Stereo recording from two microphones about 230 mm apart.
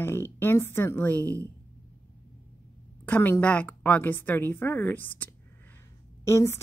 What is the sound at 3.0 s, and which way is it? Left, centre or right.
A woman's voice, centre.